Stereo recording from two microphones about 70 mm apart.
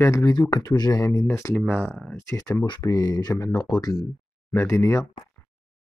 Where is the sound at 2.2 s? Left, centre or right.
Left.